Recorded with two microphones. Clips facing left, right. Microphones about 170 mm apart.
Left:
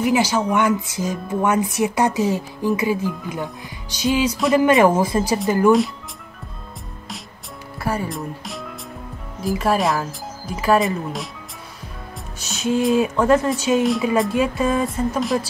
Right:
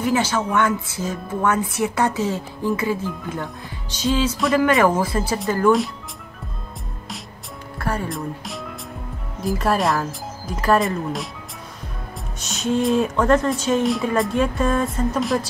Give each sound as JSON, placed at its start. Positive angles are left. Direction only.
{"t": 0.0, "sound": "speech", "side_deg": 15}
{"t": 7.8, "sound": "speech", "side_deg": 5}
{"t": 12.4, "sound": "speech", "side_deg": 5}